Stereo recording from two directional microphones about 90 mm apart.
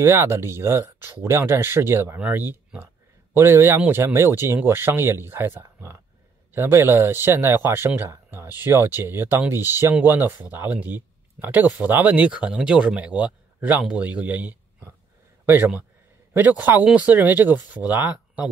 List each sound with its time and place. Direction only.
0.0 s speech: 30° right (ahead or behind); by 18.5 s 15° right (ahead or behind)